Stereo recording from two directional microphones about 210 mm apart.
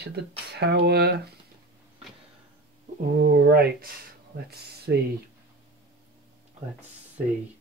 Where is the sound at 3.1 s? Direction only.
50° right (ahead or behind).